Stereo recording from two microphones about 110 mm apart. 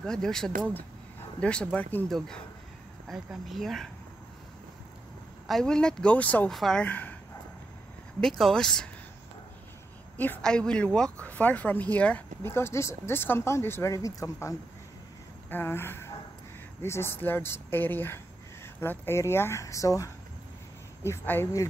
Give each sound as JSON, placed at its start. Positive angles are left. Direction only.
{"t": 0.0, "sound": "speech", "side_deg": 5}
{"t": 5.5, "sound": "speech", "side_deg": 5}
{"t": 6.5, "sound": "speech", "side_deg": 5}
{"t": 8.2, "sound": "speech", "side_deg": 5}
{"t": 10.1, "sound": "speech", "side_deg": 15}
{"t": 12.4, "sound": "speech", "side_deg": 20}